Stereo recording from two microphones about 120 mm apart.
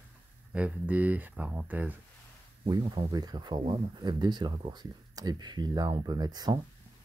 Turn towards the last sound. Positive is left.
turn(degrees=-35)  # may be behind; listen again after turning